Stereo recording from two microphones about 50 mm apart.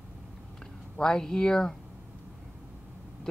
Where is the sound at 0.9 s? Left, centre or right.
Centre.